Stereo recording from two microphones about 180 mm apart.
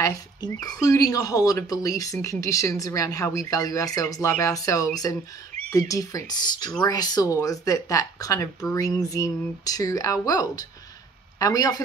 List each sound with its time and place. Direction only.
0.0 s speech: 20° left (ahead or behind)